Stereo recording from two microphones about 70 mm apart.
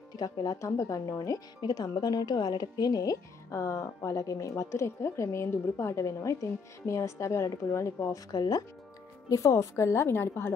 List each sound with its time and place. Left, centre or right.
0.1 s speech: left
0.6 s speech: left
1.6 s speech: left
8.3 s speech: left
9.3 s speech: left